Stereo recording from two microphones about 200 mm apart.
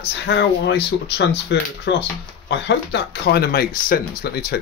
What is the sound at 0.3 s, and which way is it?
Speech, 60° left (ahead or behind).